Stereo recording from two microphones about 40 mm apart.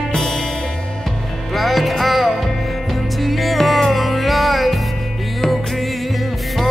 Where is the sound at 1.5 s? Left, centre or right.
Centre.